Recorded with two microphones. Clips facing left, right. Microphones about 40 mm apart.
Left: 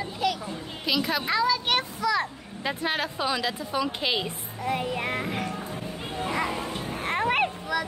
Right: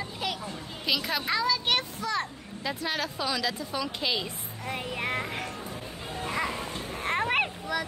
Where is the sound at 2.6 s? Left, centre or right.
Left.